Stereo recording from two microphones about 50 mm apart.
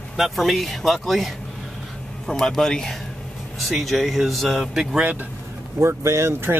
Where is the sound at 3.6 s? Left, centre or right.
Centre.